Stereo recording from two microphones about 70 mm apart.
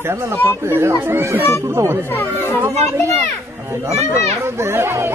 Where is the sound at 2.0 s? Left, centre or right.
Left.